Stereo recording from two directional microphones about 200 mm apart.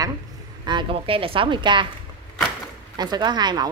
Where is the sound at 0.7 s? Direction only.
25° right (ahead or behind).